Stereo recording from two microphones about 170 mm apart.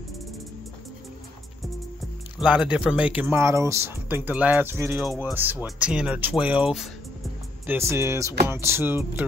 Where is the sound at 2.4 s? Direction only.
5° right (ahead or behind).